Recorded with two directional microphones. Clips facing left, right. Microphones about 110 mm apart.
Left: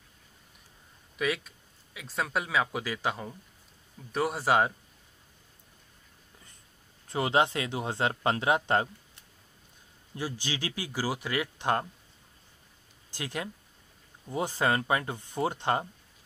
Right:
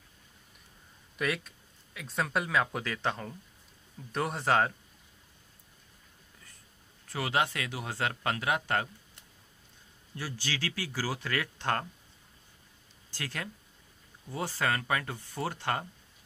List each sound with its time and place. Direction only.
1.1 s speech: centre (ahead or behind)
7.1 s speech: 25° left (ahead or behind)
10.1 s speech: 20° left (ahead or behind)
13.1 s speech: 15° left (ahead or behind)